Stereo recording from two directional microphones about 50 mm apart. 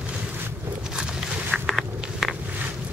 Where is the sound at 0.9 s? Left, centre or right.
Centre.